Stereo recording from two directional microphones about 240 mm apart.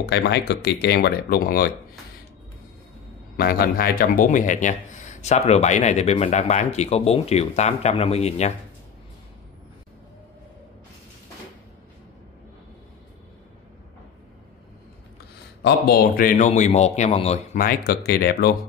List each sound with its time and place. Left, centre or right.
0.0 s a man's voice: left
3.3 s speech: left
15.6 s a man's voice: left